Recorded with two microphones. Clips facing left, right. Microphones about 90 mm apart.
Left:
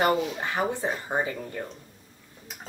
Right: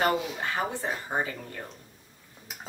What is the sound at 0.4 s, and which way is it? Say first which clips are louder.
Speech: left 3 dB; 15° left (ahead or behind).